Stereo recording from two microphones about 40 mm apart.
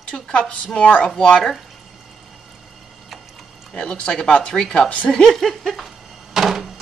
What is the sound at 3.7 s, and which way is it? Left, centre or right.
Speech, centre.